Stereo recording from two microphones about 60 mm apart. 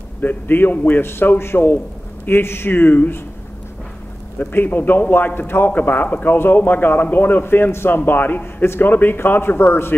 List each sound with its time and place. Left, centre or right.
0.2 s a man's voice: left
4.4 s a man's voice: left